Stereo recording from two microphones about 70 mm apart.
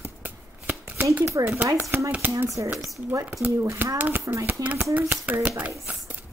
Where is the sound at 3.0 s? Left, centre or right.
Right.